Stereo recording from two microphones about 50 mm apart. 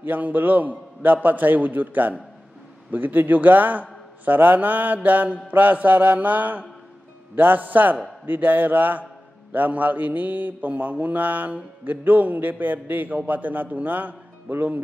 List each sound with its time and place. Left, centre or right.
0.0 s mantra: right